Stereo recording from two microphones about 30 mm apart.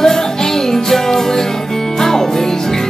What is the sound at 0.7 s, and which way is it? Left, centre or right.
Music, centre.